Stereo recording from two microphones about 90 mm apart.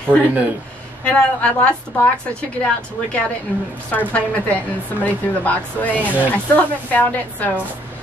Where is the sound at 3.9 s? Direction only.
15° left (ahead or behind).